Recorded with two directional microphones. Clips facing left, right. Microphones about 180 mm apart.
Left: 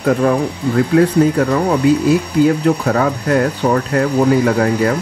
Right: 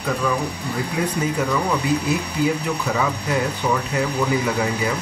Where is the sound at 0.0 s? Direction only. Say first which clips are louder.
Left 9 dB; 55° left (ahead or behind).